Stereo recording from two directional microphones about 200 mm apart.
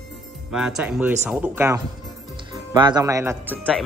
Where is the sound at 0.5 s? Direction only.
5° right (ahead or behind).